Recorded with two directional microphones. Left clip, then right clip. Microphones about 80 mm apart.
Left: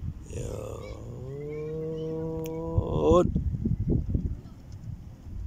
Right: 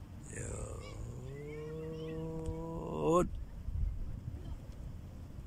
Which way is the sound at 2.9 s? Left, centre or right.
Left.